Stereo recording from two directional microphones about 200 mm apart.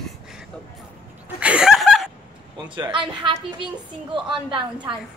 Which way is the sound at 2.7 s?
25° right (ahead or behind).